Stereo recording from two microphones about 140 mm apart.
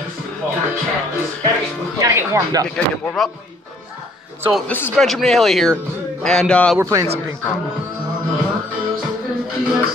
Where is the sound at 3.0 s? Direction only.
Centre (ahead or behind).